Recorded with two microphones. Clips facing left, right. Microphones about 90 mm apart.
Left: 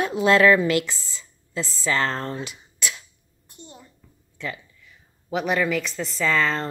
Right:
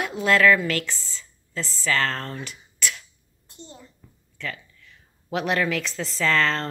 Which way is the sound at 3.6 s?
15° left (ahead or behind).